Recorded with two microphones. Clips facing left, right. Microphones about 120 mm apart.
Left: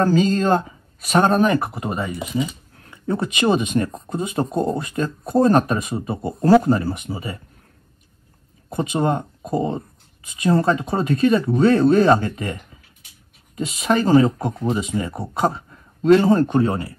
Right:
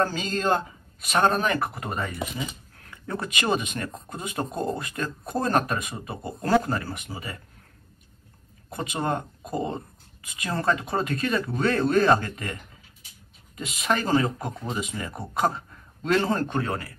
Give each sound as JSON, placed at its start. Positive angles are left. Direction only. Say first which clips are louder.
{"t": 0.0, "sound": "speech", "louder": "left 8 dB", "side_deg": 35}
{"t": 1.9, "sound": "speech", "louder": "left 5 dB", "side_deg": 10}
{"t": 2.9, "sound": "speech", "louder": "left 8 dB", "side_deg": 25}
{"t": 8.6, "sound": "speech", "louder": "left 7 dB", "side_deg": 25}
{"t": 13.6, "sound": "speech", "louder": "left 7 dB", "side_deg": 30}